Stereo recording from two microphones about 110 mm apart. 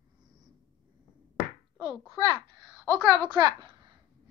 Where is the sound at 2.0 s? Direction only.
50° right (ahead or behind).